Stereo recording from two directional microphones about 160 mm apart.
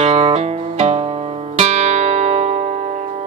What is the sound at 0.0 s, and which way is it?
Music, 40° right (ahead or behind).